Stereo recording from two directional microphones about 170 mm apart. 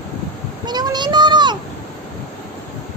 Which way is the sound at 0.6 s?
25° right (ahead or behind).